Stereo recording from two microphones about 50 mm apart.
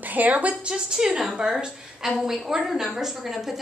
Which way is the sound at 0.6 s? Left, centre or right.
Centre.